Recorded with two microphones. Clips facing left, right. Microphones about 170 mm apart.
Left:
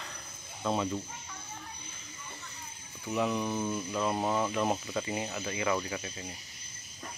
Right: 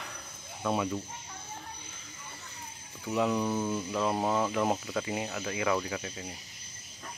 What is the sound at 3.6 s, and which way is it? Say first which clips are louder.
Speech: right 1 dB; 5° right (ahead or behind).